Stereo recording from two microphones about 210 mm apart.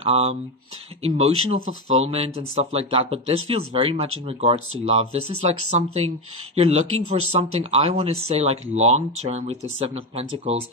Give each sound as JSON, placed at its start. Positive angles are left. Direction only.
{"t": 0.0, "sound": "speech", "side_deg": -30}
{"t": 1.7, "sound": "speech", "side_deg": -75}
{"t": 2.0, "sound": "speech", "side_deg": -30}
{"t": 6.9, "sound": "speech", "side_deg": -90}
{"t": 7.7, "sound": "speech", "side_deg": -30}